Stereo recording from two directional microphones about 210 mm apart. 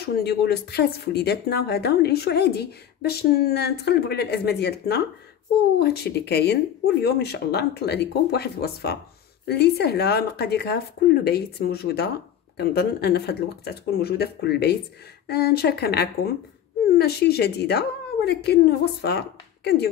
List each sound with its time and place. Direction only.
0.0 s speech: 50° left (ahead or behind)